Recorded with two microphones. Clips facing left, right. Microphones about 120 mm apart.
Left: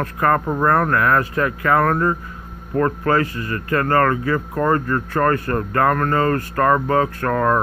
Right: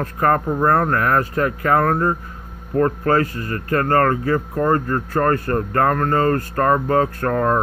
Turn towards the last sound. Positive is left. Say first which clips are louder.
# even
turn(degrees=-30)  # may be behind; listen again after turning